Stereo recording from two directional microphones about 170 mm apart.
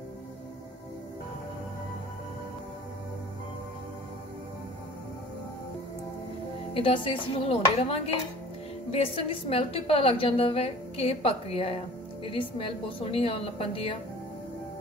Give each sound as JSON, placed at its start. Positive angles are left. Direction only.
{"t": 6.7, "sound": "a woman's voice", "side_deg": 30}